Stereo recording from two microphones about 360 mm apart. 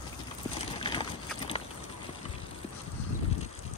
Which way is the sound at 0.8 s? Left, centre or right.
Centre.